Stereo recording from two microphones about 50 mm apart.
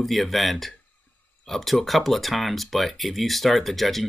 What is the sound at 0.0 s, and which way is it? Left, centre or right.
Speech, centre.